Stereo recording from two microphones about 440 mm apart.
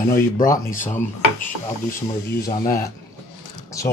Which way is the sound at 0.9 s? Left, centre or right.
Centre.